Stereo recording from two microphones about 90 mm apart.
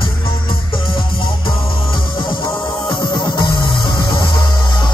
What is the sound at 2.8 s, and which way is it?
Music, 55° left (ahead or behind).